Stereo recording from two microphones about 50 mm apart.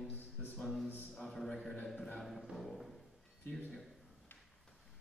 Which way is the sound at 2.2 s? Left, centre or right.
Centre.